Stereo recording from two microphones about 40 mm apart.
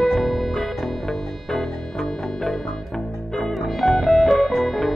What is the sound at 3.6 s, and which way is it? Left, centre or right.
Music, centre.